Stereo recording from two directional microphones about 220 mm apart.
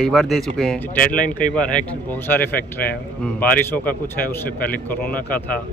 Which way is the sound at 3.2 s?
5° left (ahead or behind).